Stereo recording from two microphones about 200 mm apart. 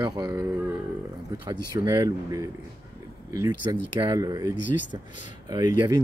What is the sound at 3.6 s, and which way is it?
Speech, 20° right (ahead or behind).